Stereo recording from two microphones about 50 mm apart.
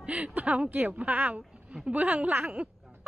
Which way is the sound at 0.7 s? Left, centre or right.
Right.